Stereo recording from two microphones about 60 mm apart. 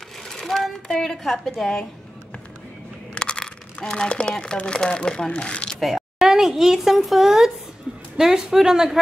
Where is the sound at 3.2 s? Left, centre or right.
Centre.